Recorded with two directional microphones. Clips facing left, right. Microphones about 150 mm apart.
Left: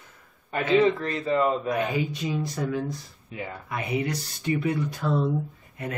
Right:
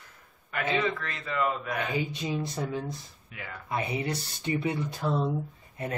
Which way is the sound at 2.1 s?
25° right (ahead or behind).